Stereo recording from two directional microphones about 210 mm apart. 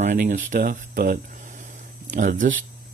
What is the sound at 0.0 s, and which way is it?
Speech, 35° right (ahead or behind).